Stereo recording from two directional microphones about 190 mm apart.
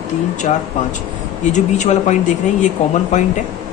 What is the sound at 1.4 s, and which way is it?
Speech, 40° left (ahead or behind).